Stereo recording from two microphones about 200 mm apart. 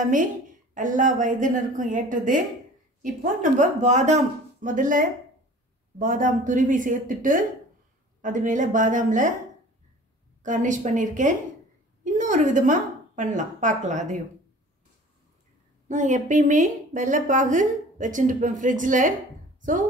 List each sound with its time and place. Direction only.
0.0 s a woman's voice: 40° right (ahead or behind)
10.4 s a woman's voice: 40° right (ahead or behind)
15.9 s a woman's voice: 35° right (ahead or behind)